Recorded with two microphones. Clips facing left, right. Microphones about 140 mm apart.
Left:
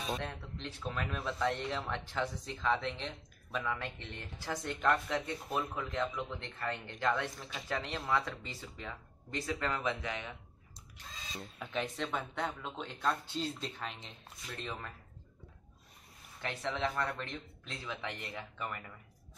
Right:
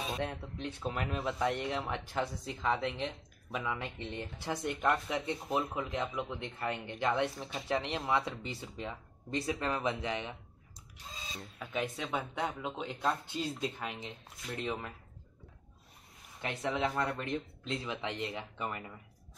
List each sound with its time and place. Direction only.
0.1 s speech: 15° right (ahead or behind)
11.3 s speech: 5° right (ahead or behind)
16.3 s speech: 15° right (ahead or behind)